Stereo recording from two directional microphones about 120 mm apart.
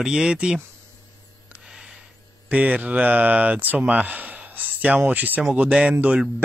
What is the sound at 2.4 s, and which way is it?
Speech, 10° right (ahead or behind).